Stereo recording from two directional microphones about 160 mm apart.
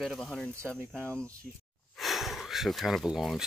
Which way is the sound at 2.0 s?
Centre (ahead or behind).